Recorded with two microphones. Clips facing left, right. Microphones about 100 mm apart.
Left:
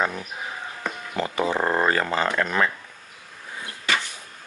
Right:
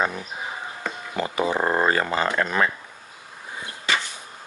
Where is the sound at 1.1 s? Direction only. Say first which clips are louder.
Even; 10° right (ahead or behind).